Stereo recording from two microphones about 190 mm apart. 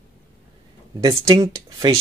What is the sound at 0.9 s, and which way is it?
Speech, 20° right (ahead or behind).